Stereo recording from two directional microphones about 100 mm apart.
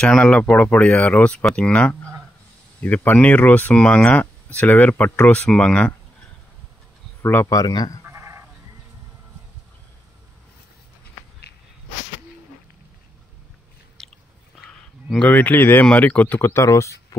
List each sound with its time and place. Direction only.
0.0 s speech: 10° left (ahead or behind)
7.2 s speech: 20° left (ahead or behind)
7.4 s speech: 40° left (ahead or behind)
8.0 s sheep: 25° right (ahead or behind)
14.0 s biting: 5° left (ahead or behind)
14.6 s speech: 10° left (ahead or behind); by 16.9 s 30° left (ahead or behind)
17.1 s a sound: 35° left (ahead or behind)